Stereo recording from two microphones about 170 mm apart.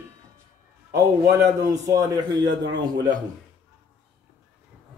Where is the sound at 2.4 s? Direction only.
90° right.